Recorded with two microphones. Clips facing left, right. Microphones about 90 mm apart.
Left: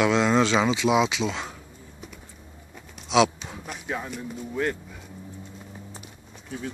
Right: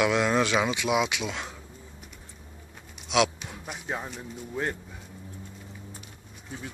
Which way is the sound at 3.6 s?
20° right (ahead or behind).